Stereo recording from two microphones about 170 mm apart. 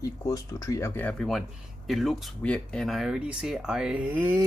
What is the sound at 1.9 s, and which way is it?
Speech, centre (ahead or behind).